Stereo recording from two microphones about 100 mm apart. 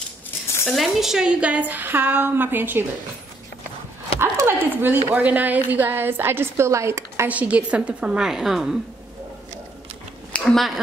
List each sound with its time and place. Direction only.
0.7 s a woman's voice: centre (ahead or behind); by 2.8 s 20° right (ahead or behind)
4.2 s a sound: 20° right (ahead or behind)
5.1 s a woman's voice: 15° right (ahead or behind)
7.2 s a woman's voice: 15° right (ahead or behind)
10.3 s speech: 5° left (ahead or behind)